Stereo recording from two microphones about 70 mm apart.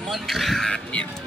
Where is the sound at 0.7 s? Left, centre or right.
Centre.